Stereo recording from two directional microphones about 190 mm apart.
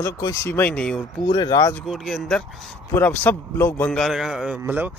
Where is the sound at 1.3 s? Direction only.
20° left (ahead or behind).